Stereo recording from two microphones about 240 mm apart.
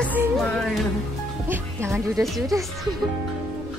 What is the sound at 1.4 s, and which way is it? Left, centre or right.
Speech, centre.